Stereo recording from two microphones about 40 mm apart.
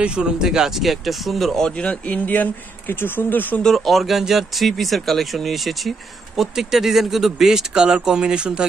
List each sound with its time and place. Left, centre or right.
0.0 s speech: right
0.8 s speech: centre
1.6 s a man's voice: left
2.0 s speech: left
2.9 s speech: left
3.6 s speech: centre; by 8.6 s right